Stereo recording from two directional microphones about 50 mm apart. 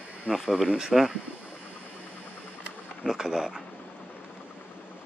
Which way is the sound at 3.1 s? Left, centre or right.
Centre.